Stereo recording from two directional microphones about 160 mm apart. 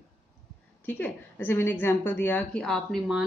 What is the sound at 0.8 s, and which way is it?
A woman's voice, 10° left (ahead or behind).